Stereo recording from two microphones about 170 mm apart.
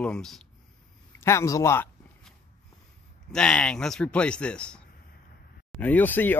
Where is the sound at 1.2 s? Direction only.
15° left (ahead or behind).